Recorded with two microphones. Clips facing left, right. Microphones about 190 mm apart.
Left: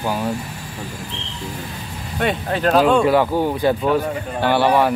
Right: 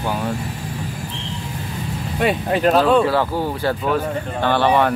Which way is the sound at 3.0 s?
15° left (ahead or behind).